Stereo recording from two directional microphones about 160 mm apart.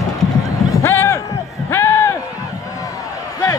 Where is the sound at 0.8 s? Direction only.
15° left (ahead or behind).